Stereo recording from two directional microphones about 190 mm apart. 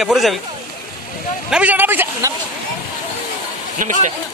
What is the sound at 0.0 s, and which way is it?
Speech, centre (ahead or behind).